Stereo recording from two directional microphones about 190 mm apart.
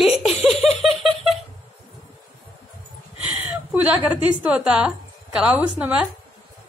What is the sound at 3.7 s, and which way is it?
Speech, 5° right (ahead or behind).